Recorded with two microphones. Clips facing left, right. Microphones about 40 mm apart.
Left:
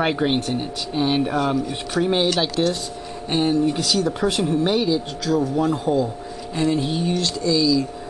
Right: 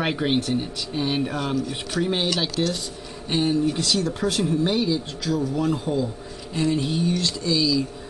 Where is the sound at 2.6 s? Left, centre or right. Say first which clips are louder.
Left 4 dB; left.